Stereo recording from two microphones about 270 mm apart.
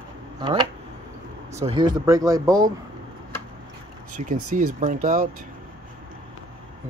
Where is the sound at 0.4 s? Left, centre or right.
Centre.